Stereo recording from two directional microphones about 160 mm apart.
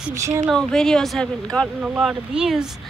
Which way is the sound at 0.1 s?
20° right (ahead or behind).